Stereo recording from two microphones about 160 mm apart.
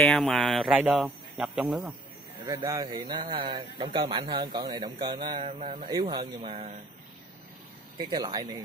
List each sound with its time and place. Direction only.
0.0 s speech: 5° left (ahead or behind)
2.4 s a man's voice: 20° right (ahead or behind)
8.0 s a man's voice: 25° right (ahead or behind)